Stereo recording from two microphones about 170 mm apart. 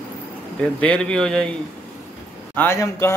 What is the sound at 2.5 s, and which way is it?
Speech, 15° left (ahead or behind).